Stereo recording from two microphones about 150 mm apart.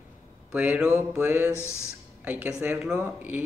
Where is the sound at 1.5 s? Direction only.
15° left (ahead or behind).